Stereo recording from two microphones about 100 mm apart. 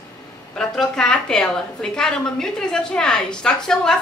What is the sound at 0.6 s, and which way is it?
A woman's voice, 5° left (ahead or behind).